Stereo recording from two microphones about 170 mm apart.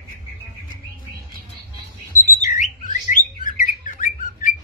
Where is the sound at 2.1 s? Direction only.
50° left (ahead or behind).